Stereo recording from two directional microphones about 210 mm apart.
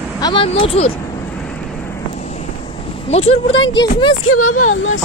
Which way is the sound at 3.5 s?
65° left (ahead or behind).